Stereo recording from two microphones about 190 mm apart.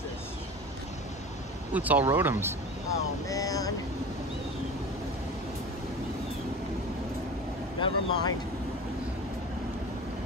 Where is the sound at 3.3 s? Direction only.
20° left (ahead or behind).